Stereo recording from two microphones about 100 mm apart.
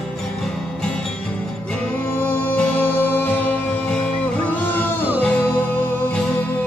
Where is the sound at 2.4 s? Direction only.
20° left (ahead or behind).